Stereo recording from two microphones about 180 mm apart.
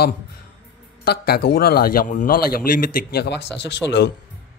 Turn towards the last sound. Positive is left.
turn(degrees=70)  # may be behind; listen again after turning